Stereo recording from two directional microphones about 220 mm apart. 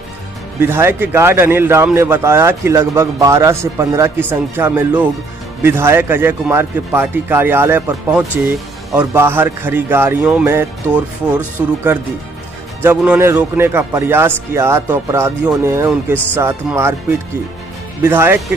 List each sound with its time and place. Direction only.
0.6 s speech: 10° right (ahead or behind)
18.0 s speech: 10° right (ahead or behind)